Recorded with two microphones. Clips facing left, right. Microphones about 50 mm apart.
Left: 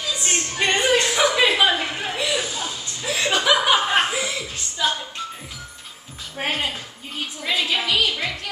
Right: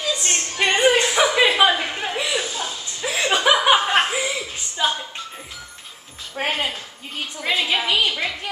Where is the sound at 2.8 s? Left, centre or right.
Centre.